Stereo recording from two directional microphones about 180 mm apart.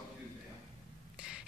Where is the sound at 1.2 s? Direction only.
5° right (ahead or behind).